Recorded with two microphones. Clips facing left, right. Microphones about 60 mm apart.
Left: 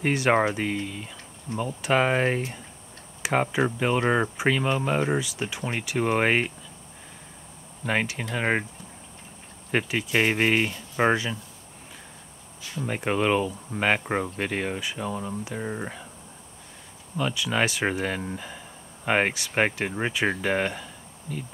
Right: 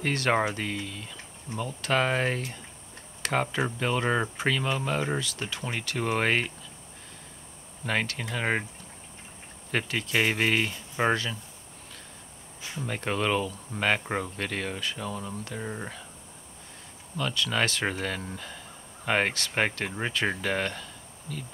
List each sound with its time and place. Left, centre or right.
0.0 s speech: centre
7.8 s speech: centre
9.7 s speech: centre
12.8 s speech: centre
17.2 s speech: centre